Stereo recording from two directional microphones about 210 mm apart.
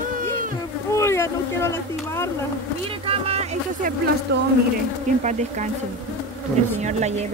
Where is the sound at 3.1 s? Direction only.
30° right (ahead or behind).